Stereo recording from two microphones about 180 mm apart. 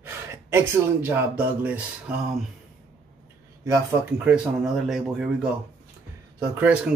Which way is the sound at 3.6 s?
20° right (ahead or behind).